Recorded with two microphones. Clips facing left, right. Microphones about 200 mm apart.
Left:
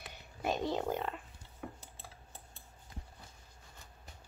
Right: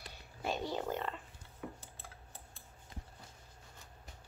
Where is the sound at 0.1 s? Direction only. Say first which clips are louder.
Left 3 dB; 20° left (ahead or behind).